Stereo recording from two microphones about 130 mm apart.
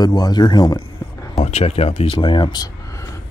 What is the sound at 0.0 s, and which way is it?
Speech, 35° left (ahead or behind).